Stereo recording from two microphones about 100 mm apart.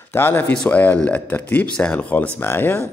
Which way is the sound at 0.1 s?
20° left (ahead or behind).